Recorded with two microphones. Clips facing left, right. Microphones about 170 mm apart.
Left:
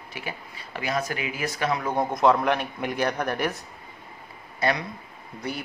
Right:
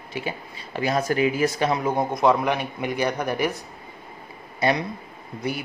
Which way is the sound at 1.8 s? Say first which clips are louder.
Even; centre (ahead or behind).